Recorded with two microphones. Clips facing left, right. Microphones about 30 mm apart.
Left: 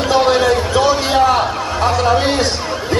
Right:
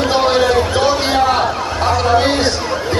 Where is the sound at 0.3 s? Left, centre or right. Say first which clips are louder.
Even; centre.